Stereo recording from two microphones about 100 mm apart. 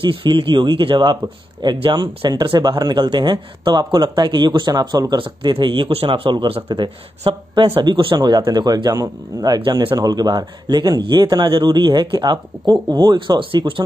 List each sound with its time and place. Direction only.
0.0 s speech: 60° right (ahead or behind)